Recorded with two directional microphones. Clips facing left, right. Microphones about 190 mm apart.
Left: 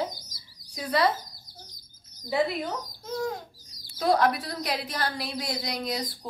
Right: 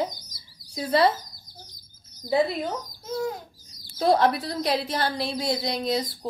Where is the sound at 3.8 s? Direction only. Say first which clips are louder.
Right 3 dB; 25° right (ahead or behind).